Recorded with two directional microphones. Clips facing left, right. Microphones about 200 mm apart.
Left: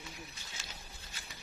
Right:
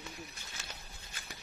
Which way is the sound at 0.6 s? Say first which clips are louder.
Right 3 dB; 60° right (ahead or behind).